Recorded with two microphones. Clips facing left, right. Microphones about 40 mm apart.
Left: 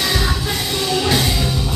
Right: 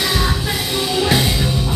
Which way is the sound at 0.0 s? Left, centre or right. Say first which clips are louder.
Right 1 dB; centre.